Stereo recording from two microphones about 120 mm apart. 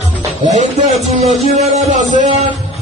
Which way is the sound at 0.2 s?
75° right (ahead or behind).